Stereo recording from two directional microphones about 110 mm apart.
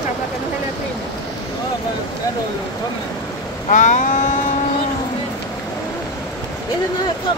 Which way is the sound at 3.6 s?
90° left.